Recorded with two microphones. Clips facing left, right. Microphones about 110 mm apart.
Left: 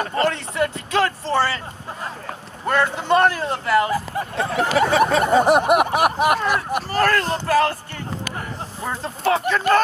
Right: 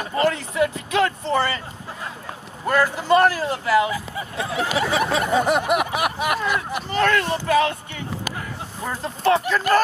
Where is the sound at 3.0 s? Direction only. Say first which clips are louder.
Right 1 dB; 5° right (ahead or behind).